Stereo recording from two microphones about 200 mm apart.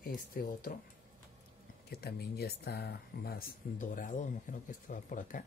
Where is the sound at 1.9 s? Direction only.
50° left (ahead or behind).